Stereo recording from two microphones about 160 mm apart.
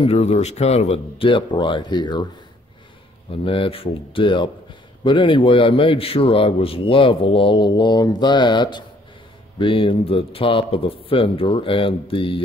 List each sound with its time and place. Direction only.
0.0 s a man's voice: 40° left (ahead or behind)
3.4 s a man's voice: 35° left (ahead or behind)